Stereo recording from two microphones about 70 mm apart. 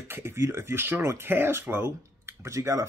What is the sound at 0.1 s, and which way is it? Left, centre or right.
Speech, right.